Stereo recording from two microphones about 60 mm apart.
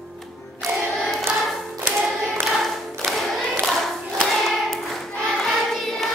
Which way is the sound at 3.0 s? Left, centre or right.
Centre.